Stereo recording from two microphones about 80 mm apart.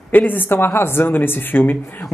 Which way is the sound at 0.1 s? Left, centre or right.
Left.